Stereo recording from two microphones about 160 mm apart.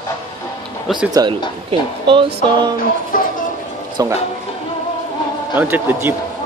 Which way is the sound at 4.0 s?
20° right (ahead or behind).